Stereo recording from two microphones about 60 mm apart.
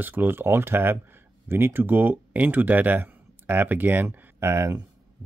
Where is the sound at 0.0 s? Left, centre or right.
Right.